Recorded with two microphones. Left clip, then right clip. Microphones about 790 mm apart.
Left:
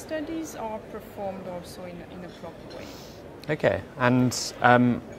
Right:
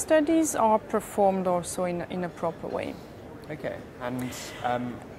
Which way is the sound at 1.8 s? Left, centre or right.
Right.